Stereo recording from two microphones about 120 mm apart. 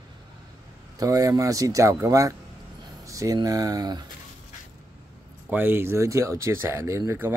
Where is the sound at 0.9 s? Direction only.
30° right (ahead or behind).